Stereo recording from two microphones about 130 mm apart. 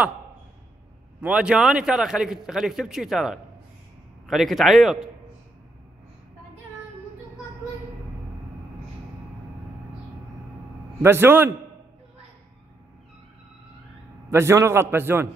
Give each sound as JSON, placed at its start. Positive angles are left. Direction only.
{"t": 1.2, "sound": "a man's voice", "side_deg": -5}
{"t": 11.0, "sound": "a man's voice", "side_deg": -20}
{"t": 14.3, "sound": "a man's voice", "side_deg": -20}